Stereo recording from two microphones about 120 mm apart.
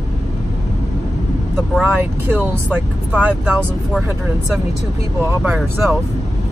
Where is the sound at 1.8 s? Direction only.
15° right (ahead or behind).